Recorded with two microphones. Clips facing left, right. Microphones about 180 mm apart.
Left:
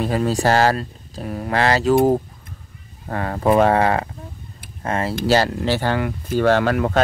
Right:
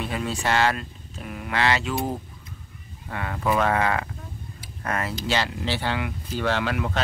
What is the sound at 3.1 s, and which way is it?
Speech, 40° left (ahead or behind).